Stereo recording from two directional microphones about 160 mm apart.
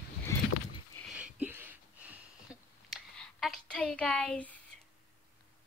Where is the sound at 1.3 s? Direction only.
10° right (ahead or behind); by 4.6 s 10° left (ahead or behind).